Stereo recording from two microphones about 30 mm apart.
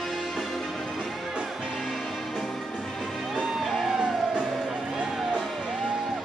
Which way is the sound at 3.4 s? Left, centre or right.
Centre.